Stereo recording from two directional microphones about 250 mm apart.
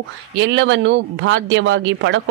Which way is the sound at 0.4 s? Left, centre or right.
Right.